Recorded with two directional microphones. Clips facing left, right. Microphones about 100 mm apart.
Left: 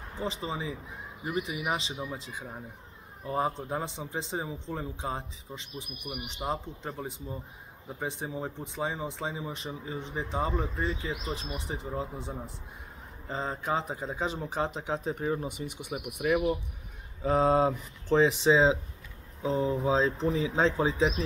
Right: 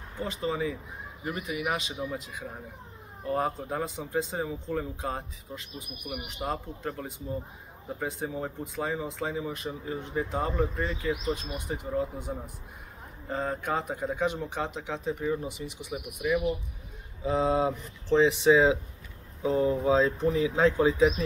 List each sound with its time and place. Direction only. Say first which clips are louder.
0.2 s speech: right 4 dB; 25° left (ahead or behind)
3.3 s speech: right 1 dB; 15° left (ahead or behind)
3.5 s speech: right 1 dB; 25° left (ahead or behind)
8.0 s speech: right 1 dB; 20° left (ahead or behind)
13.3 s speech: right 1 dB; 20° left (ahead or behind); by 15.3 s 40° left (ahead or behind)
15.4 s speech: even; 55° left (ahead or behind)
17.2 s speech: left 2 dB; 45° left (ahead or behind)